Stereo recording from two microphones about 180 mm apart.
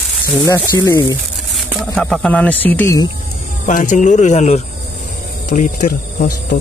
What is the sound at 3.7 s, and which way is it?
Speech, 45° left (ahead or behind).